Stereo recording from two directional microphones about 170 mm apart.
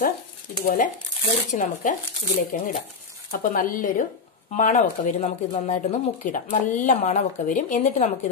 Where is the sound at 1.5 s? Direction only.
45° left (ahead or behind).